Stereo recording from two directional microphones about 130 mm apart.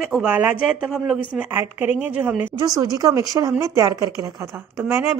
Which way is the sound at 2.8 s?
25° right (ahead or behind).